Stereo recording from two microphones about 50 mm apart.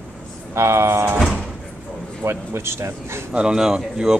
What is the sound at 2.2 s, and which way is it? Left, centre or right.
Speech, right.